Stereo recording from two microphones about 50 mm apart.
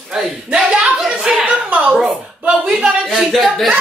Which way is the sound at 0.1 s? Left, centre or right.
Centre.